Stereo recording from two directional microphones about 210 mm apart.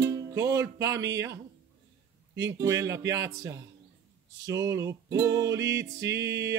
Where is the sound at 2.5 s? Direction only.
15° right (ahead or behind).